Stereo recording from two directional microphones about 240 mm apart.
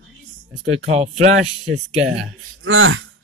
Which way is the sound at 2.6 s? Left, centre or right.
Right.